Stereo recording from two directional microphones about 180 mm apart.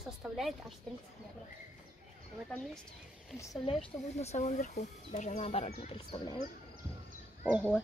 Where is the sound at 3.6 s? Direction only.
35° left (ahead or behind).